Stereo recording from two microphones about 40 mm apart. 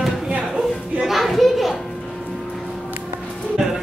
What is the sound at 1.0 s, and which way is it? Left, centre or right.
Children playing, centre.